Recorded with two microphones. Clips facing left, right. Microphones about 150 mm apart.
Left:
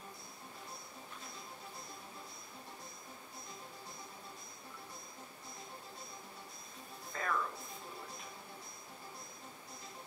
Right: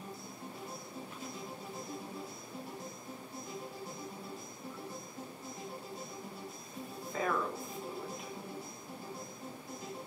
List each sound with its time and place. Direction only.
7.1 s music: 5° right (ahead or behind)